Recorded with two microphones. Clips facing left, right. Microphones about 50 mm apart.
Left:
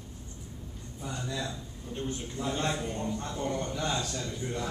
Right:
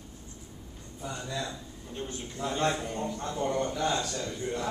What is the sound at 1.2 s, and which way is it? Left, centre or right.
A man's voice, centre.